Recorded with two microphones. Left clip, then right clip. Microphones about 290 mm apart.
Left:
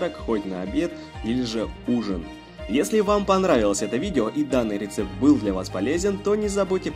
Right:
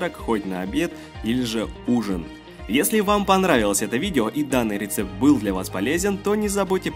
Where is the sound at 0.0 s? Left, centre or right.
Right.